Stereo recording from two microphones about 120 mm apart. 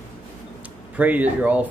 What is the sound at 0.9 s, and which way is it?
Mantra, 15° right (ahead or behind).